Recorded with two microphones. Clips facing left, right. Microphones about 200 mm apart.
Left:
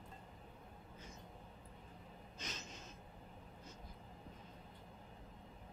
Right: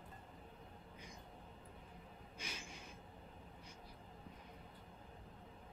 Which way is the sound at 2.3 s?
10° right (ahead or behind).